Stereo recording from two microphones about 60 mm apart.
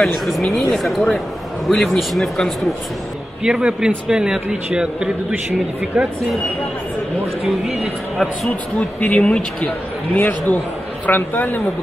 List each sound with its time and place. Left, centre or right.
0.0 s speech: centre
3.4 s a man's voice: centre
7.4 s speech: centre
8.7 s speech: left
10.1 s a man's voice: left